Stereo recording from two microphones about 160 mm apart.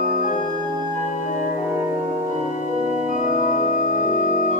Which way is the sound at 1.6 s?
10° right (ahead or behind).